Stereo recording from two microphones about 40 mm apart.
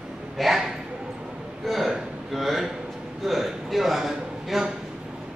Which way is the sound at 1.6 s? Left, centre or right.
Centre.